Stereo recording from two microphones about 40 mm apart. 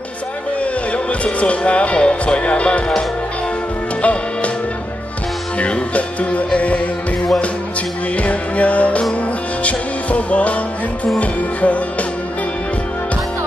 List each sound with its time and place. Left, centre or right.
0.6 s speech: left
4.0 s music: left
5.6 s music: left
8.2 s music: left